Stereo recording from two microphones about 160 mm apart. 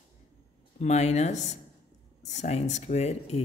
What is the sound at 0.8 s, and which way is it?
A man's voice, 45° left (ahead or behind).